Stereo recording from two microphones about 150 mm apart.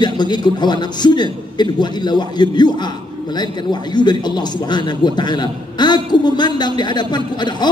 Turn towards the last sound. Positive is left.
turn(degrees=30)  # may be behind; listen again after turning